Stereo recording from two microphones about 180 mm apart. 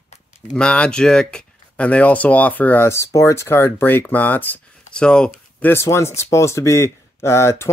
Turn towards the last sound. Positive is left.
turn(degrees=15)  # may be behind; listen again after turning